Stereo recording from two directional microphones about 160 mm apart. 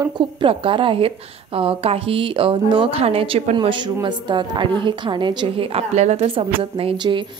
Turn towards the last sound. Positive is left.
turn(degrees=-30)  # may be behind; listen again after turning